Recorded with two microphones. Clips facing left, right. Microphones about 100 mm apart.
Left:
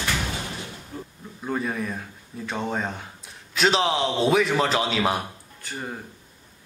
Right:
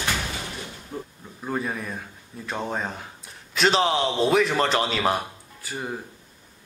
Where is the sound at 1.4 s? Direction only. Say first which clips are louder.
Left 1 dB; centre (ahead or behind).